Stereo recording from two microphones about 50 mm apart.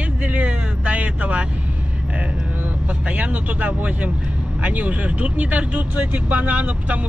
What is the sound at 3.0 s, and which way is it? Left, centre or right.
Speech, right.